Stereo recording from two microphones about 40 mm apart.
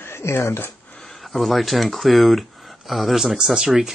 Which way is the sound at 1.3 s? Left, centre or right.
Centre.